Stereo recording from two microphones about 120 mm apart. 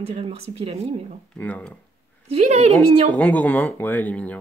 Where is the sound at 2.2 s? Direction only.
65° right (ahead or behind).